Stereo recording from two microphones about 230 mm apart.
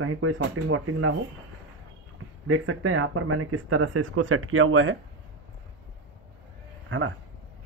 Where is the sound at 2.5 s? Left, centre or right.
Right.